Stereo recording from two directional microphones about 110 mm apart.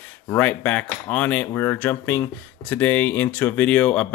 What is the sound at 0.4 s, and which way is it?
Speech, 15° left (ahead or behind).